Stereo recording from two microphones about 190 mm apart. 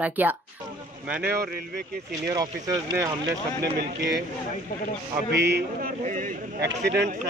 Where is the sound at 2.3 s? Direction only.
20° right (ahead or behind).